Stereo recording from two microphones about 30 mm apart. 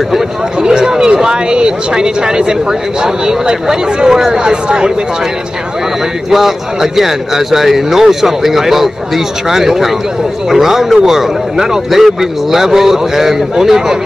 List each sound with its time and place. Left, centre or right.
0.6 s speech: right
6.3 s a man's voice: centre